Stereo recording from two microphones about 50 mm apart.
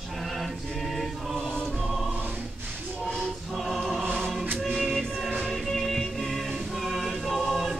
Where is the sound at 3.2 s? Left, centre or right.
Centre.